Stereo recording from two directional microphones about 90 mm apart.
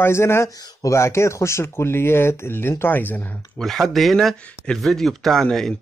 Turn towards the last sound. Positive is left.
turn(degrees=5)  # may be behind; listen again after turning